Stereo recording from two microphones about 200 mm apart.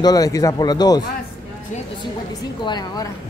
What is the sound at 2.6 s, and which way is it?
Speech, 20° left (ahead or behind).